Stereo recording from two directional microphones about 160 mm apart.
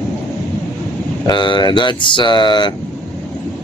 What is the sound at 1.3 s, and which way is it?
Speech, 30° left (ahead or behind).